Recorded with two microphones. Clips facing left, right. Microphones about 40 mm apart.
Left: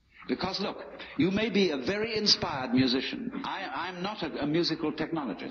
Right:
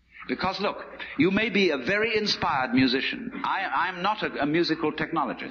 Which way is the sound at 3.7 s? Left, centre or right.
Right.